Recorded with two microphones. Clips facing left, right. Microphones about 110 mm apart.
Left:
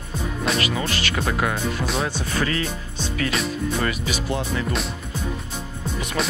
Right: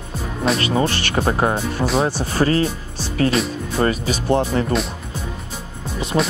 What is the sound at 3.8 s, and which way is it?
Speech, 35° right (ahead or behind).